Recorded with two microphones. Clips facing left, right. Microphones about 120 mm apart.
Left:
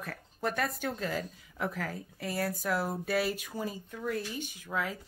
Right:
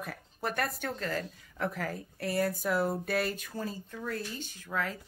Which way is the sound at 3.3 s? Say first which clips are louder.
Left 1 dB; 15° left (ahead or behind).